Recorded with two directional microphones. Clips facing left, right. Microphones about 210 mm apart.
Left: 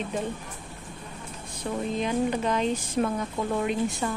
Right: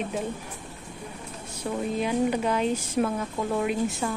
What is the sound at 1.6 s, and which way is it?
Speech, 10° right (ahead or behind).